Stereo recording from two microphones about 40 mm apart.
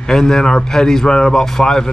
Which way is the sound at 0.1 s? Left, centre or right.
Centre.